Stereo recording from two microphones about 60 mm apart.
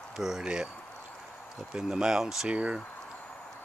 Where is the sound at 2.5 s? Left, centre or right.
Centre.